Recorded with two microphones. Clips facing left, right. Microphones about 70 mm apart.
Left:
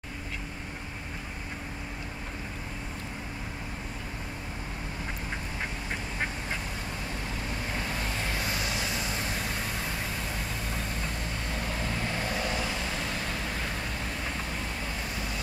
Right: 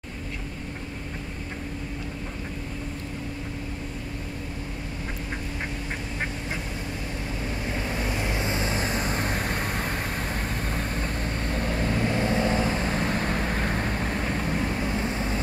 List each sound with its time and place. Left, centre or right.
7.9 s vehicle: right